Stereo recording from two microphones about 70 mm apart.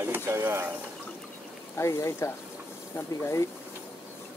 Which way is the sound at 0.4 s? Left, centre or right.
Right.